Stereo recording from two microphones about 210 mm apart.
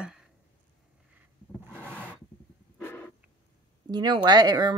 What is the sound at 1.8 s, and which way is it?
Rub, 10° right (ahead or behind).